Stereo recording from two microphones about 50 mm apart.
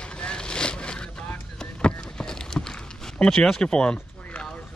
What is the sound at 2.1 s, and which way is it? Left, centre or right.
Run, centre.